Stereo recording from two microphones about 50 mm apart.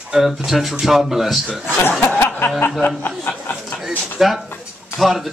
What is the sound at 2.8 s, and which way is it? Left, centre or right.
Speech, left.